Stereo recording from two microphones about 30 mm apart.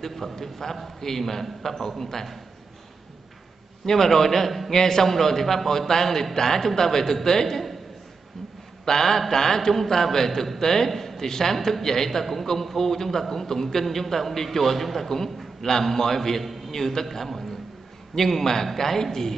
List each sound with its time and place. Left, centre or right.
0.0 s a man's voice: centre
3.8 s a man's voice: centre
4.7 s a man's voice: centre
8.8 s a man's voice: centre